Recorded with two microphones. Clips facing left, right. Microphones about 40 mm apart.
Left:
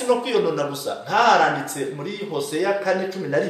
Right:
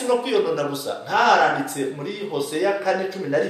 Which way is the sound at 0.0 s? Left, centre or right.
Centre.